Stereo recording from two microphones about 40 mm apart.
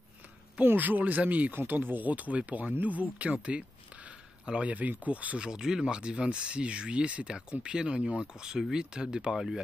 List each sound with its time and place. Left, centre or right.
0.7 s speech: right
1.5 s speech: right
3.4 s a sound: right
4.6 s speech: right
5.4 s speech: centre